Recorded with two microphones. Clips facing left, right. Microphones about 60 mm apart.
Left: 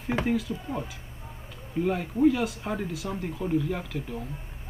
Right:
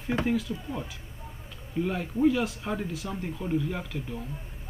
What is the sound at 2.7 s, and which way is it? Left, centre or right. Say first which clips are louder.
Speech: left 1 dB; centre.